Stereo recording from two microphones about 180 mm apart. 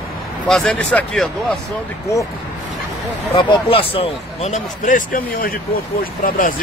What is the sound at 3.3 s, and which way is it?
Speech, 30° left (ahead or behind).